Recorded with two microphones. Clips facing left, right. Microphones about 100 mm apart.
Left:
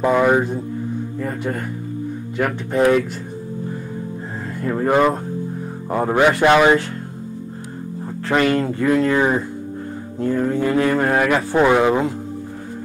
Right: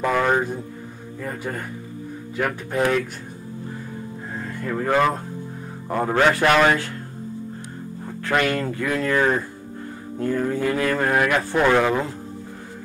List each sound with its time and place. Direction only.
0.0 s speech: 15° left (ahead or behind)
1.2 s speech: centre (ahead or behind)
4.6 s speech: 20° left (ahead or behind)
8.4 s speech: 10° left (ahead or behind)
8.7 s speech: 30° left (ahead or behind)
10.1 s music: 20° left (ahead or behind)
10.5 s speech: 20° left (ahead or behind)
11.2 s speech: 25° left (ahead or behind)
11.6 s speech: 15° left (ahead or behind)